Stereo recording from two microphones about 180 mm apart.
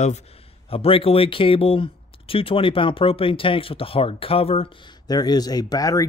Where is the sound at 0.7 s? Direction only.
30° left (ahead or behind).